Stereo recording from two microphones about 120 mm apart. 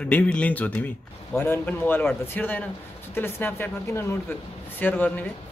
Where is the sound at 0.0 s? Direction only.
10° left (ahead or behind).